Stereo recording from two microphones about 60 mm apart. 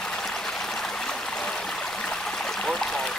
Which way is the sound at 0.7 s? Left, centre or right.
Centre.